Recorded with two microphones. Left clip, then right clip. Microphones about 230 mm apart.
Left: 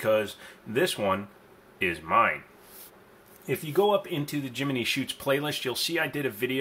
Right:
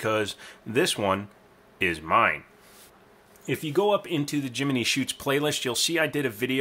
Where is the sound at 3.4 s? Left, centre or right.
Right.